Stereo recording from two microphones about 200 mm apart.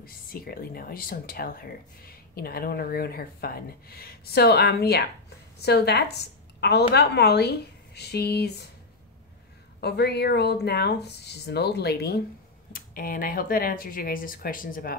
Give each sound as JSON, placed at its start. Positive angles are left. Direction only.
{"t": 0.0, "sound": "a woman's voice", "side_deg": 45}
{"t": 9.8, "sound": "speech", "side_deg": 55}